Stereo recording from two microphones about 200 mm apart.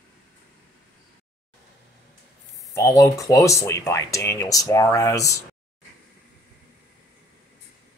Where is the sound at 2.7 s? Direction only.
15° left (ahead or behind).